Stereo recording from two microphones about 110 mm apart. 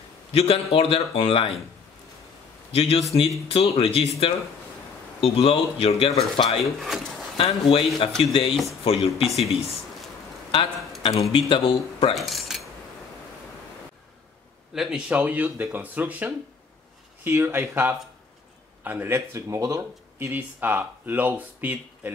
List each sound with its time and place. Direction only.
0.3 s speech: 65° left (ahead or behind)
2.7 s speech: 60° left (ahead or behind)
6.6 s speech: centre (ahead or behind)
7.3 s speech: 55° left (ahead or behind)
11.3 s speech: 50° left (ahead or behind)
12.2 s a sound: centre (ahead or behind)
14.7 s speech: 5° right (ahead or behind)